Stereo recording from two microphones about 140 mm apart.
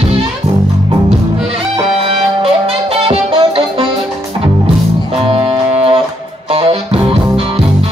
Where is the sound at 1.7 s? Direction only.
40° right (ahead or behind).